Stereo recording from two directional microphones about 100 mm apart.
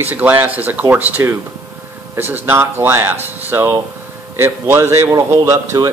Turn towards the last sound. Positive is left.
turn(degrees=-30)  # may be behind; listen again after turning